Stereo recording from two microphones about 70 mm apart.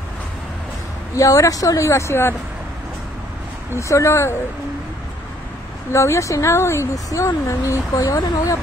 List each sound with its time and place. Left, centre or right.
1.1 s speech: left
3.7 s speech: left
5.9 s speech: left